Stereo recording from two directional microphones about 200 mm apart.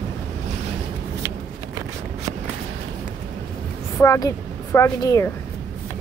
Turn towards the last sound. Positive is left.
turn(degrees=15)  # may be behind; listen again after turning